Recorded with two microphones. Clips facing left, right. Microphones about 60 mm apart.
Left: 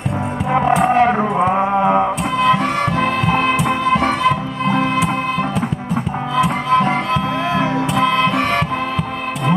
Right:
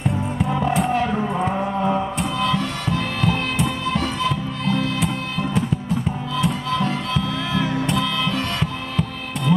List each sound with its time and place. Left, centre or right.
0.5 s music: left
6.3 s music: left